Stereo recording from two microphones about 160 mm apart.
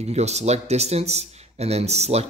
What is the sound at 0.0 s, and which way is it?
Speech, 45° right (ahead or behind).